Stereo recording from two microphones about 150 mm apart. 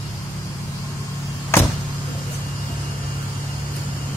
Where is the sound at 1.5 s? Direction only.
15° left (ahead or behind).